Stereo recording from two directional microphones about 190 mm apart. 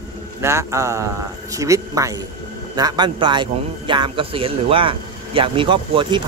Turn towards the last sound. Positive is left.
turn(degrees=-25)  # may be behind; listen again after turning